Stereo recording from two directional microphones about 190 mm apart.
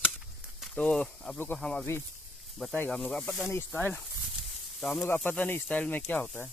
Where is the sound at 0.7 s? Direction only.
5° left (ahead or behind).